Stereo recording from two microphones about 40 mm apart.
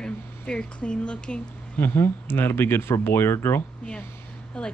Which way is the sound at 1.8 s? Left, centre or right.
Left.